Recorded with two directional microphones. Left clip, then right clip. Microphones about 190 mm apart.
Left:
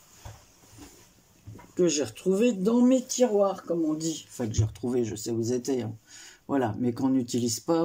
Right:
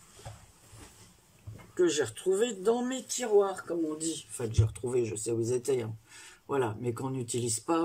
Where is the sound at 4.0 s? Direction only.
30° left (ahead or behind).